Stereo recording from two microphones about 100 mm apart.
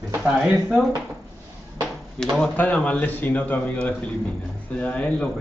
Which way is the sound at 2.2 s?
10° left (ahead or behind).